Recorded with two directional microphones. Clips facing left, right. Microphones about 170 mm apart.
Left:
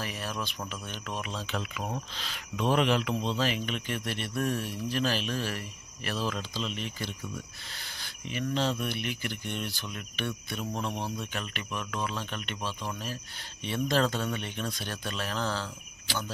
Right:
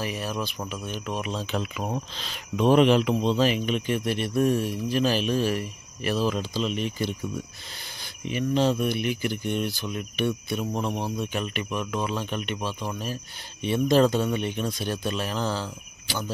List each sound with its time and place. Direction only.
0.0 s speech: 15° right (ahead or behind)